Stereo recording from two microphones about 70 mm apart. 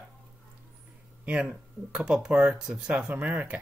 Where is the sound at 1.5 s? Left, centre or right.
Centre.